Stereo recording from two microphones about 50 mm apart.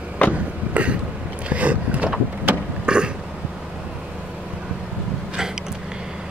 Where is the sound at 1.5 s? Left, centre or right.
Right.